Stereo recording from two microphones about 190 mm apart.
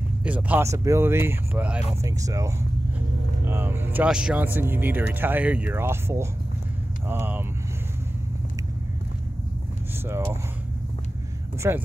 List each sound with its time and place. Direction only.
0.2 s speech: 5° right (ahead or behind)
2.0 s speech: 15° right (ahead or behind)
10.0 s speech: 10° right (ahead or behind)
11.6 s speech: 15° right (ahead or behind)